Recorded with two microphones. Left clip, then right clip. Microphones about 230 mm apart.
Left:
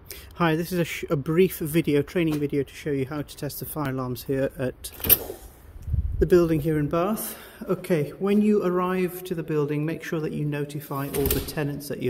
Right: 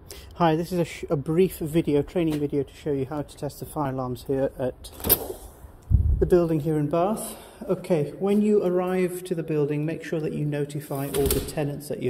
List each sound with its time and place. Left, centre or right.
0.4 s a man's voice: left
6.1 s a man's voice: left; by 11.1 s centre
11.4 s speech: left